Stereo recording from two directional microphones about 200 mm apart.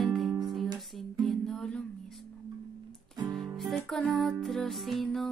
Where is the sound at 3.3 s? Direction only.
Centre (ahead or behind).